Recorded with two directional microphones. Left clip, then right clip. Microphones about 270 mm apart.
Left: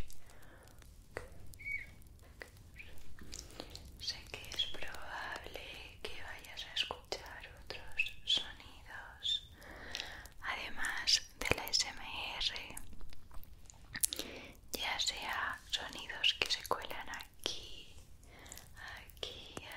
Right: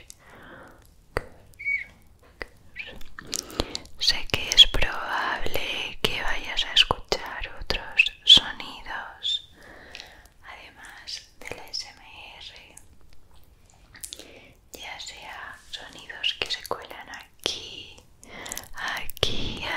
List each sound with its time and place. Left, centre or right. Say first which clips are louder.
1.1 s chop: right 15 dB; right
1.6 s a sound: right 15 dB; right
2.3 s chewing: right 15 dB; right
9.2 s a sound: right 9 dB; centre
9.6 s a sound: right 2 dB; centre
10.1 s whispering: left 3 dB; left
13.9 s whispering: left 1 dB; left; by 17.3 s centre
17.4 s whispering: right 14 dB; centre
18.3 s whispering: right 18 dB; right